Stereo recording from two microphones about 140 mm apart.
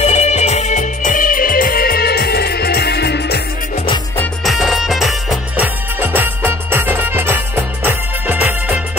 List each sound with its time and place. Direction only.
0.0 s music: 50° left (ahead or behind); by 2.0 s 90° left
4.5 s music: centre (ahead or behind)
5.9 s music: 15° right (ahead or behind)